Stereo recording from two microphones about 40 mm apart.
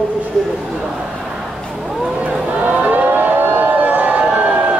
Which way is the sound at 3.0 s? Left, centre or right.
Right.